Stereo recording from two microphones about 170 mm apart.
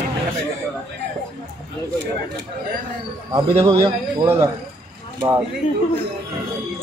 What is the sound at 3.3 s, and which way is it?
A man's voice, 25° right (ahead or behind).